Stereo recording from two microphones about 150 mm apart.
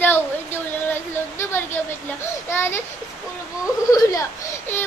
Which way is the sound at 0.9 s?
15° left (ahead or behind).